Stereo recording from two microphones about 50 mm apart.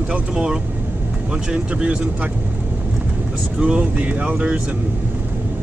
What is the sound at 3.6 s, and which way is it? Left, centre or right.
Speech, right.